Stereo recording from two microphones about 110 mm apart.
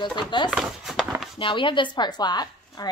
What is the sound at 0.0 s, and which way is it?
Speech, 45° left (ahead or behind).